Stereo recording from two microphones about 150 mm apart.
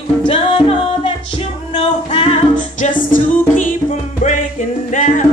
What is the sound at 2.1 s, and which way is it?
Music, 40° left (ahead or behind).